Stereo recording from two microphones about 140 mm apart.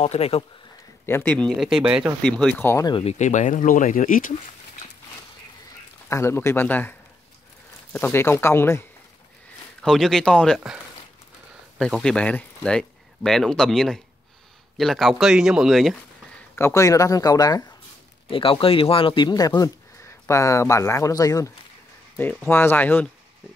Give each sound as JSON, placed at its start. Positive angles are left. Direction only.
{"t": 0.0, "sound": "speech", "side_deg": 45}
{"t": 1.0, "sound": "speech", "side_deg": 15}
{"t": 2.2, "sound": "speech", "side_deg": 5}
{"t": 2.6, "sound": "speech", "side_deg": 20}
{"t": 2.9, "sound": "speech", "side_deg": 45}
{"t": 6.0, "sound": "speech", "side_deg": 20}
{"t": 9.8, "sound": "speech", "side_deg": 0}
{"t": 11.8, "sound": "speech", "side_deg": 5}
{"t": 16.5, "sound": "speech", "side_deg": 20}
{"t": 18.3, "sound": "speech", "side_deg": 40}
{"t": 22.1, "sound": "speech", "side_deg": 10}